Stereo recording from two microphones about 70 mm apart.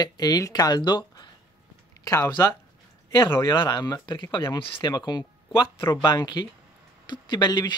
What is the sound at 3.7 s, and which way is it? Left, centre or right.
Speech, left.